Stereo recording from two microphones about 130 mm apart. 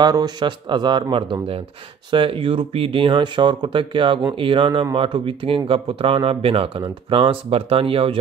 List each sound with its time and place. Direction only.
0.0 s speech: 30° right (ahead or behind)